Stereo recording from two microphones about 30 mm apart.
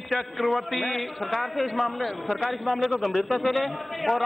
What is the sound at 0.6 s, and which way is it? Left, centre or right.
A man's voice, centre.